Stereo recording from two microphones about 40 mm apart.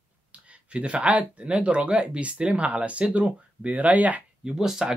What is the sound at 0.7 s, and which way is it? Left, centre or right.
Speech, right.